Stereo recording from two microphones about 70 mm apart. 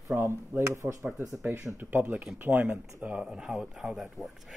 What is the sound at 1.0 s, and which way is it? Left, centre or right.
Speech, centre.